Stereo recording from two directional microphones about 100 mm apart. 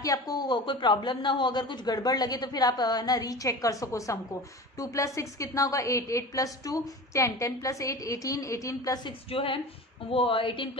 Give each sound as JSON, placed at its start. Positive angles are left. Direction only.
{"t": 0.0, "sound": "a man's voice", "side_deg": 40}
{"t": 9.3, "sound": "a woman's voice", "side_deg": 65}